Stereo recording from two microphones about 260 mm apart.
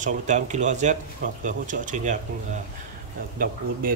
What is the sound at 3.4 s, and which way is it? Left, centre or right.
Speech, right.